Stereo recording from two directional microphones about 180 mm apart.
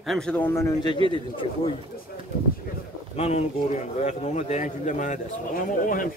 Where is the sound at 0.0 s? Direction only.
Centre (ahead or behind).